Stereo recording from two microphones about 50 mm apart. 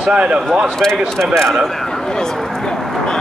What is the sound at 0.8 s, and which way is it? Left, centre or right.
Speech, centre.